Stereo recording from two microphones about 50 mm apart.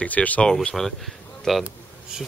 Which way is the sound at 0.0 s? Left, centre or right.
Left.